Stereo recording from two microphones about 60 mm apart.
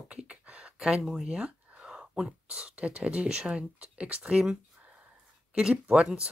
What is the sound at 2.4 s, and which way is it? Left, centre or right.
Speech, right.